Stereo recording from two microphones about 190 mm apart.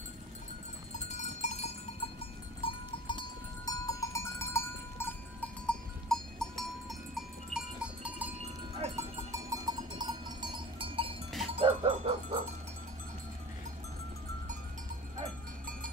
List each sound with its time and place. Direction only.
0.9 s cowbell: 40° left (ahead or behind)
2.6 s cowbell: 25° left (ahead or behind); by 8.3 s 5° right (ahead or behind)
8.4 s cowbell: 30° right (ahead or behind)
9.3 s cowbell: 20° right (ahead or behind)
11.5 s dog: 30° right (ahead or behind)